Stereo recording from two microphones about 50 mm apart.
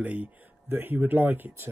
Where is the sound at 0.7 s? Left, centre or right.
Right.